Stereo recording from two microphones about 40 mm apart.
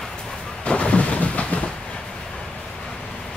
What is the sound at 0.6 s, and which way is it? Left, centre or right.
Thunder, left.